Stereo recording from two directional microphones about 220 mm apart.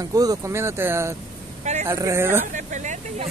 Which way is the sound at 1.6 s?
30° right (ahead or behind).